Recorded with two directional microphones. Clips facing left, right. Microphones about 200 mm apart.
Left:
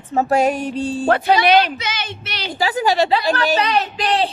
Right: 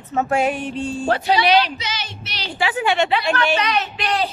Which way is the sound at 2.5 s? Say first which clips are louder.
Left 2 dB; 35° left (ahead or behind).